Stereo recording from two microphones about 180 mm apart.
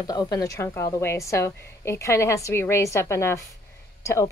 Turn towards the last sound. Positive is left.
turn(degrees=15)  # may be behind; listen again after turning